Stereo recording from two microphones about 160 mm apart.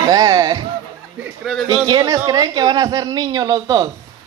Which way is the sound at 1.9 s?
20° right (ahead or behind).